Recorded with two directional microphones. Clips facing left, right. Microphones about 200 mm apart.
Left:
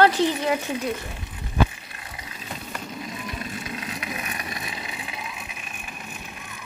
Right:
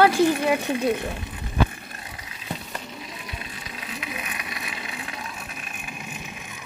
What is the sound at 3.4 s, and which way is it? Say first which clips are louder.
Vehicle: left 5 dB; 45° left (ahead or behind).